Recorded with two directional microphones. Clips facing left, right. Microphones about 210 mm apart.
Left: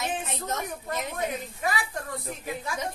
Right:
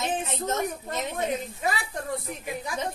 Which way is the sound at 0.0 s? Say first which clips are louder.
Right 3 dB; 25° right (ahead or behind).